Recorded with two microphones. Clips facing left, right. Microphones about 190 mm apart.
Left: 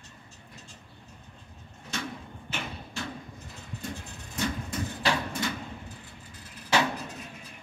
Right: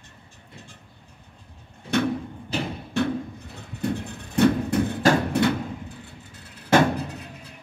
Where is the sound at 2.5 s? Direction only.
35° right (ahead or behind).